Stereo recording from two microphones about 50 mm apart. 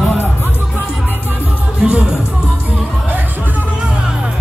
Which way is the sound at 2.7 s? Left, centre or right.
Right.